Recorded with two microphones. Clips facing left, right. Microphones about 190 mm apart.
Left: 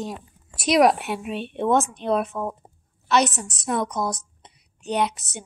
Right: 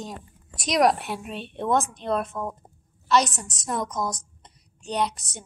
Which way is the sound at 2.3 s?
30° left (ahead or behind).